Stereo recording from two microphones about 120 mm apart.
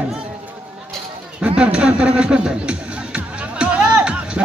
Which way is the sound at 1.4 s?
10° right (ahead or behind).